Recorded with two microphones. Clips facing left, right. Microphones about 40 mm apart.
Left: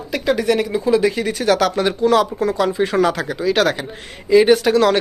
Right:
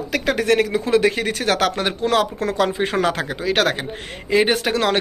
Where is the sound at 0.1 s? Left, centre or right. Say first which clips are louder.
Left 1 dB; right.